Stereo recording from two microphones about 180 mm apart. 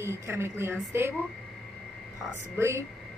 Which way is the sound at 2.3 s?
15° right (ahead or behind).